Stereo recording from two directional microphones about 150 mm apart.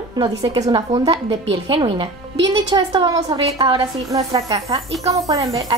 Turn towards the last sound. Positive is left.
turn(degrees=-25)  # may be behind; listen again after turning